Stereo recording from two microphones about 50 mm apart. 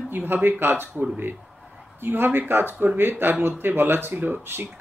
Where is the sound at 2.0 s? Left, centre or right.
Right.